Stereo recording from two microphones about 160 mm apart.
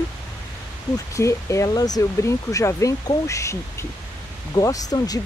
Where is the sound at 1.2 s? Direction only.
20° left (ahead or behind).